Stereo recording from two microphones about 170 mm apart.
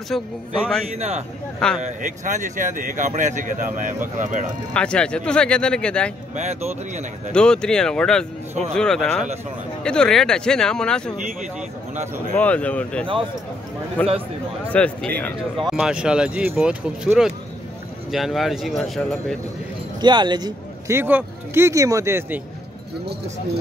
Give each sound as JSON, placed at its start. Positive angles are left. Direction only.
{"t": 0.1, "sound": "speech", "side_deg": 0}
{"t": 0.9, "sound": "speech", "side_deg": -40}
{"t": 4.7, "sound": "speech", "side_deg": 5}
{"t": 6.3, "sound": "speech", "side_deg": -40}
{"t": 7.3, "sound": "speech", "side_deg": 5}
{"t": 12.4, "sound": "speech", "side_deg": 10}
{"t": 20.0, "sound": "speech", "side_deg": -25}